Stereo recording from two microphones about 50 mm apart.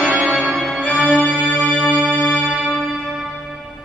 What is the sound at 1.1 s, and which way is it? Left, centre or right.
Music, left.